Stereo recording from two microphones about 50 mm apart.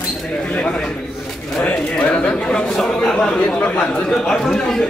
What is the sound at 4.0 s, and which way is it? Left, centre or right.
Speech, centre.